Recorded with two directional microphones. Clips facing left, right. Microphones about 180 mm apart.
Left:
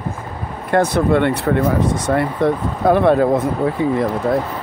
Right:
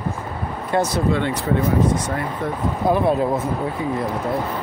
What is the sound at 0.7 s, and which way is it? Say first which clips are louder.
Speech: left 5 dB; 60° left (ahead or behind).